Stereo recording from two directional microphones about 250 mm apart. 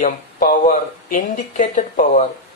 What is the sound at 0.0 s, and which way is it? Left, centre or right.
Speech, left.